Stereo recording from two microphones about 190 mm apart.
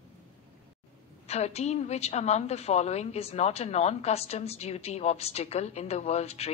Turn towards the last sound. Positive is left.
turn(degrees=35)  # may be behind; listen again after turning